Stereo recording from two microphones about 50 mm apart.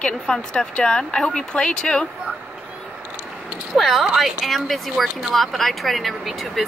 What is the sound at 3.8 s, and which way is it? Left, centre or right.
Speech, centre.